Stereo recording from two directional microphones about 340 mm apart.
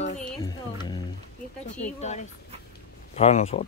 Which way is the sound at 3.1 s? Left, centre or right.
Centre.